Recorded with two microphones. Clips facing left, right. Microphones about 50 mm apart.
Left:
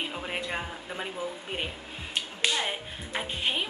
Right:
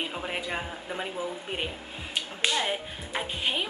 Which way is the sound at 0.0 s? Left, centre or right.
Centre.